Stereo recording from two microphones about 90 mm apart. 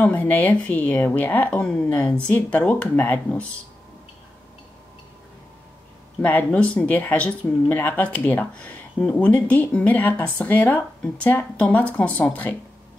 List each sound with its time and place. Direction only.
0.0 s speech: 20° left (ahead or behind)
6.2 s speech: 15° left (ahead or behind)